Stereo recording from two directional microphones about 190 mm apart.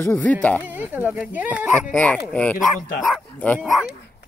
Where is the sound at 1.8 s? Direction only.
5° left (ahead or behind).